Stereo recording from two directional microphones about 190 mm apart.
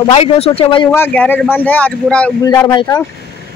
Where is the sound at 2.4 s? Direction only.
20° left (ahead or behind).